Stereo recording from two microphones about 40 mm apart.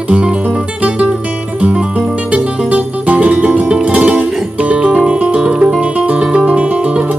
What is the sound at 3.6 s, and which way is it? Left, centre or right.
Music, right.